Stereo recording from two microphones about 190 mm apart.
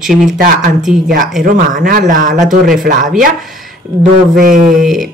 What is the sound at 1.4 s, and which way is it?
Speech, 45° right (ahead or behind).